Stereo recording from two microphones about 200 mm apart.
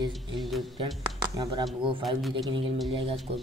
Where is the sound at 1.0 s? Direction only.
20° right (ahead or behind).